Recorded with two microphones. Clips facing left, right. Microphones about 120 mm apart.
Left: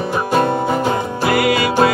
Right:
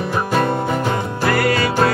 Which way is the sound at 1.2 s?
15° left (ahead or behind).